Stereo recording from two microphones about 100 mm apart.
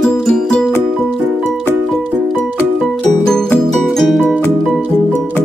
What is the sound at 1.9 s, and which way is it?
Music, 5° left (ahead or behind).